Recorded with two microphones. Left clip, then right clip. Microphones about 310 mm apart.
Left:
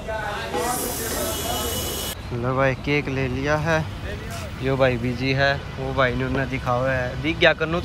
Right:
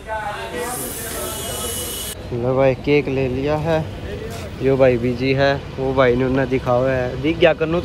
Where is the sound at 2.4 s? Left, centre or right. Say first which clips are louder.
Right 5 dB; centre.